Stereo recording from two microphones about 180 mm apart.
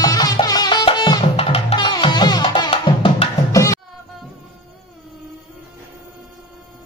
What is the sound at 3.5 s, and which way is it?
Music, 15° left (ahead or behind).